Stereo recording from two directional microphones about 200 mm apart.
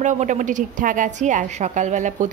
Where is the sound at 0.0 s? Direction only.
40° right (ahead or behind).